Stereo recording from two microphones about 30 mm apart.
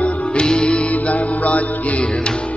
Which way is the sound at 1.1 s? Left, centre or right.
Left.